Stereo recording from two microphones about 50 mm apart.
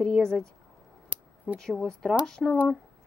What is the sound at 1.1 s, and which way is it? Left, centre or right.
Scissors, right.